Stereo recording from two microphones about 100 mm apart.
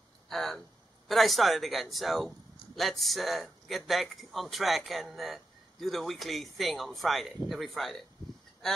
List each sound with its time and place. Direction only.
0.3 s speech: centre (ahead or behind)